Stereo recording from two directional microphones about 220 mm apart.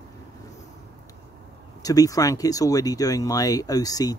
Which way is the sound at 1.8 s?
15° left (ahead or behind).